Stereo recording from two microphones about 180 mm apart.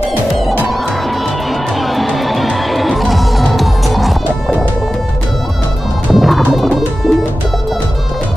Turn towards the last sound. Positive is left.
turn(degrees=0)  # may be behind; listen again after turning